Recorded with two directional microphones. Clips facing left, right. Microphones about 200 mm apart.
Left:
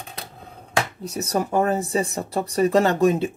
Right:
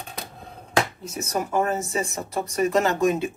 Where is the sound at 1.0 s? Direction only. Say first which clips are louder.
Left 3 dB; 35° left (ahead or behind).